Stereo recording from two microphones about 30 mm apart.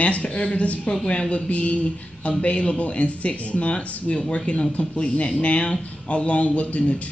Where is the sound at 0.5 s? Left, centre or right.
Left.